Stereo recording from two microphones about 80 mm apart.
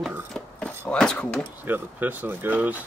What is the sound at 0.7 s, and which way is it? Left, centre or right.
Speech, centre.